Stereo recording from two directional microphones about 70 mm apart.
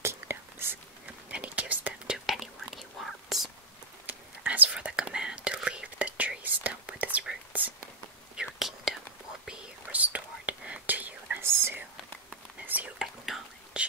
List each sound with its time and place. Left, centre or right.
0.0 s whispering: right
1.3 s whispering: centre
2.0 s whispering: centre
4.4 s whispering: centre
8.4 s whispering: centre
9.5 s whispering: centre
12.6 s whispering: right
13.0 s whispering: centre
13.7 s whispering: centre